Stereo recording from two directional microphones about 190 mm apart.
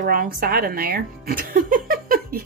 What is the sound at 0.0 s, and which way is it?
Speech, 45° right (ahead or behind).